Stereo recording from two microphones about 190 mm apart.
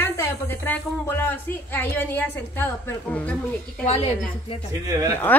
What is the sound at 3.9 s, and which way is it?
Speech, 35° left (ahead or behind).